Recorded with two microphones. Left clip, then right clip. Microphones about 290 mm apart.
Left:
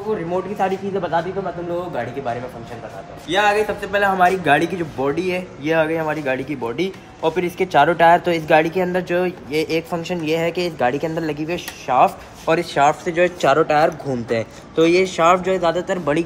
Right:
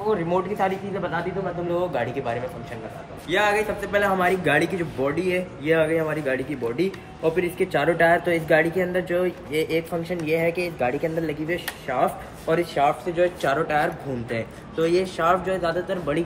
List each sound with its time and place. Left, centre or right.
0.1 s speech: centre
3.3 s a man's voice: centre
10.9 s a man's voice: left
11.2 s speech: left